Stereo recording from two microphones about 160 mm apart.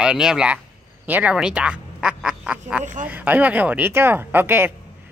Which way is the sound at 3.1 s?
10° right (ahead or behind).